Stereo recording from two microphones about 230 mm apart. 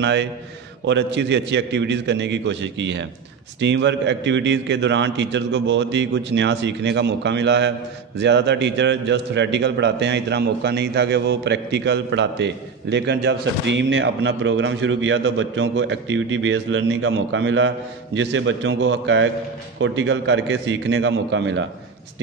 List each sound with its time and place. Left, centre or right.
0.0 s a man's voice: right